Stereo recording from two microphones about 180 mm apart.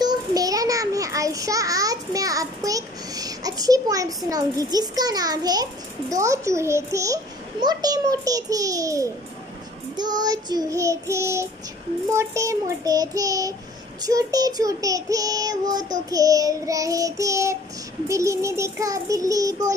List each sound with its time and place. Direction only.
0.0 s a child's voice: 20° right (ahead or behind)
7.6 s child singing: 20° right (ahead or behind)